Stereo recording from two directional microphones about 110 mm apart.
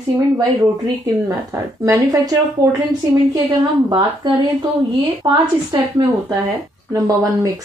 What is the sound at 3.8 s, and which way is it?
A woman's voice, 40° right (ahead or behind).